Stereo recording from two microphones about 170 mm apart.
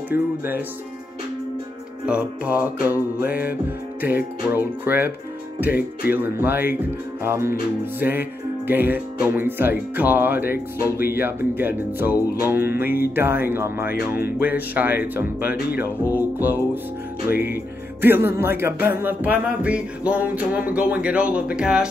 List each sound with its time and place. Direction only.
0.1 s speech: 10° right (ahead or behind)
2.0 s speech: 10° right (ahead or behind)
6.1 s speech: 10° right (ahead or behind)
13.8 s speech: 60° left (ahead or behind)
14.2 s speech: 10° right (ahead or behind)